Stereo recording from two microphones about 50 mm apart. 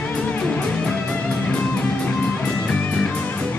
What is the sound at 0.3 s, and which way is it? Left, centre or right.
Music, left.